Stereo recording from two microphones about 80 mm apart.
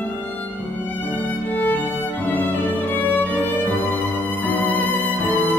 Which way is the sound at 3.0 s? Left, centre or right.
Left.